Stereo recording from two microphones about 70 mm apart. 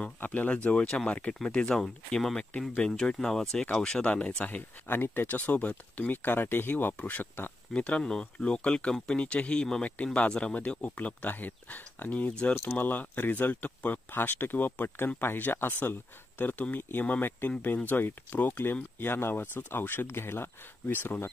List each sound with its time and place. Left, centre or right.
0.2 s speech: left